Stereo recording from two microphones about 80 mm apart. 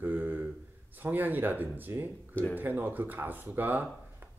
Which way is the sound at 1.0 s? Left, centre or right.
Right.